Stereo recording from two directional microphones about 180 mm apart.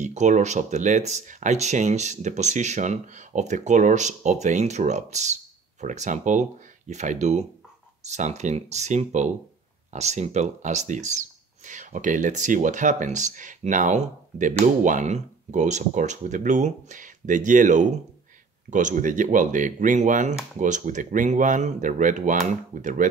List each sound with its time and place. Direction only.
0.0 s speech: 40° right (ahead or behind)